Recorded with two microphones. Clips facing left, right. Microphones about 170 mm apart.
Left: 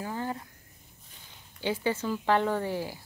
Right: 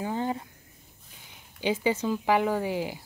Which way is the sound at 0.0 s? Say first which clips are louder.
Right 4 dB; 20° right (ahead or behind).